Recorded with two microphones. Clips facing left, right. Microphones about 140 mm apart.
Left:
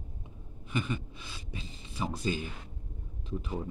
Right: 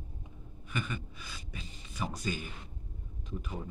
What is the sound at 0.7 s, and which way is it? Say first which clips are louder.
Speech: left 4 dB; 30° left (ahead or behind).